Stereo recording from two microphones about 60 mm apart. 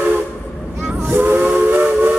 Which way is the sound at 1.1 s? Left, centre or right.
Right.